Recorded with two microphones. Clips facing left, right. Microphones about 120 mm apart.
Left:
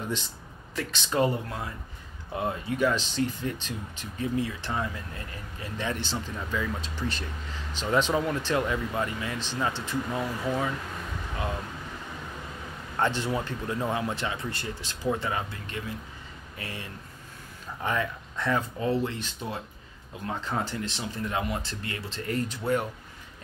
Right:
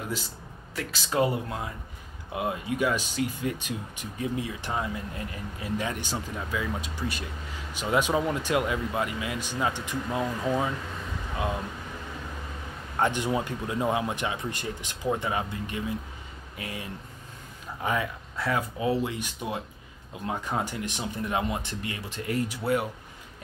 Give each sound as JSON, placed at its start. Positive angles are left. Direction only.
{"t": 0.7, "sound": "speech", "side_deg": -5}
{"t": 2.3, "sound": "speech", "side_deg": -10}
{"t": 12.9, "sound": "speech", "side_deg": -15}
{"t": 17.8, "sound": "speech", "side_deg": -10}